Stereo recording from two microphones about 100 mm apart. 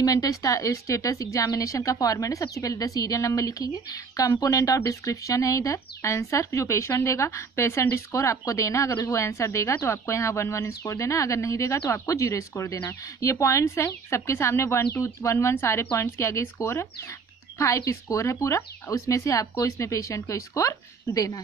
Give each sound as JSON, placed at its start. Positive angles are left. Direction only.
{"t": 0.0, "sound": "a woman's voice", "side_deg": 35}